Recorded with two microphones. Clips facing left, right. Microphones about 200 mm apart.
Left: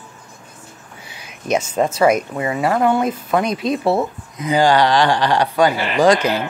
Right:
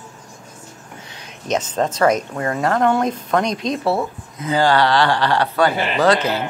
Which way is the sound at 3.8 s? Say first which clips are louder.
Left 2 dB; 20° left (ahead or behind).